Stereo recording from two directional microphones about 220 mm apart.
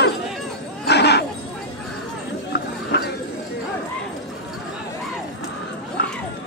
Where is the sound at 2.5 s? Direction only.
45° left (ahead or behind).